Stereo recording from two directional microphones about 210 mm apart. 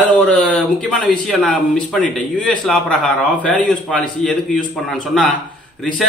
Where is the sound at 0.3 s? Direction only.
5° left (ahead or behind).